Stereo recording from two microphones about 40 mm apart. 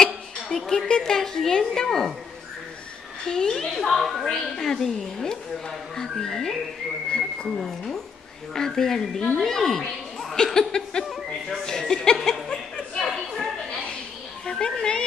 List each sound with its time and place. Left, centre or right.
0.7 s a woman's voice: centre
3.3 s a woman's voice: centre
3.5 s a woman's voice: centre
4.6 s a woman's voice: centre
11.1 s a woman's voice: centre
12.3 s chuckle: centre
13.0 s a sound: centre
14.4 s a sound: left